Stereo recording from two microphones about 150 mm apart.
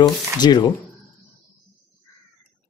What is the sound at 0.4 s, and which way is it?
Speech, 30° left (ahead or behind).